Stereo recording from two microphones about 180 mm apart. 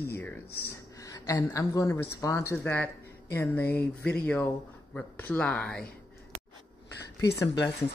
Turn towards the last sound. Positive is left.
turn(degrees=15)  # may be behind; listen again after turning